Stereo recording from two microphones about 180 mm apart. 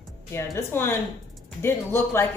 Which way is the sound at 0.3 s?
15° left (ahead or behind).